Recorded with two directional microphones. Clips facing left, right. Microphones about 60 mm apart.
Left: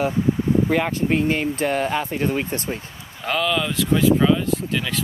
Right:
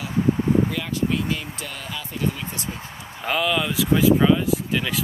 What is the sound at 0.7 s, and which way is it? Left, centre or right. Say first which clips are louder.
Speech: left 5 dB; left.